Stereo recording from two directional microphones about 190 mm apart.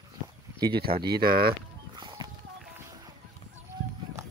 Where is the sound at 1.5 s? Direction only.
20° right (ahead or behind).